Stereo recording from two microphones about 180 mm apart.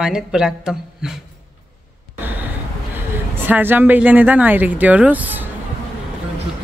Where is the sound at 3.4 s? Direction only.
10° right (ahead or behind).